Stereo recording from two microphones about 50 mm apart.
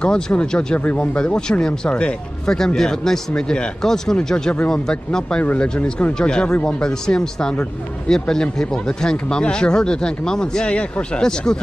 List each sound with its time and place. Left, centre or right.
0.0 s speech: left